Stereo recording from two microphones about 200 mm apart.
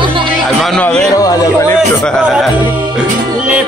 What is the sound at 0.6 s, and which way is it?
Music, 5° left (ahead or behind).